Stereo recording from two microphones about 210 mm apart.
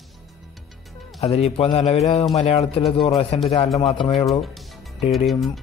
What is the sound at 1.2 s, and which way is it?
Speech, 30° left (ahead or behind).